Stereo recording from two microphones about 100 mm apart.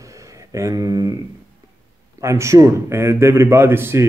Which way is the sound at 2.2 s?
30° right (ahead or behind).